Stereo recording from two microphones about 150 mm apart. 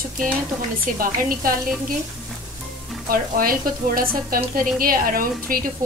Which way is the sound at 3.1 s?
75° right (ahead or behind).